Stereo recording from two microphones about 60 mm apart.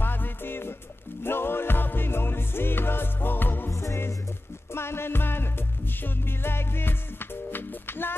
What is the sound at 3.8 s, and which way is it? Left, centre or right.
Music, left.